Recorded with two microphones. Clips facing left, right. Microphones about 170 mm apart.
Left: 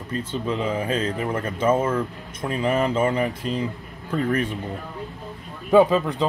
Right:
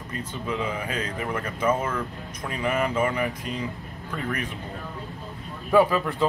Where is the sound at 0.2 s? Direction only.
30° left (ahead or behind).